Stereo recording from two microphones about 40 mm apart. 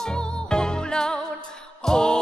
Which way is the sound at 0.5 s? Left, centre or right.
Centre.